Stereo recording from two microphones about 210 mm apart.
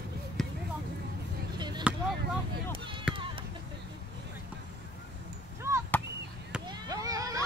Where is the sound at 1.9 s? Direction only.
5° right (ahead or behind).